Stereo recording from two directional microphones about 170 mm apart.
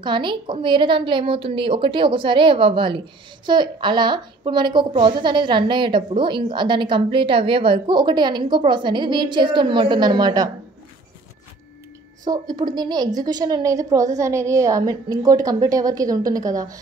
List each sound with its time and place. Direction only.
0.0 s a woman's voice: 25° right (ahead or behind)
12.3 s a woman's voice: 25° right (ahead or behind)